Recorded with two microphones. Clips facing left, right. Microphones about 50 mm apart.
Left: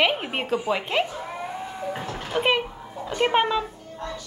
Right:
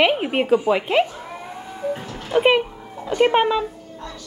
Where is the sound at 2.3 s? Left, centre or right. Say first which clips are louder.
Right 6 dB; centre.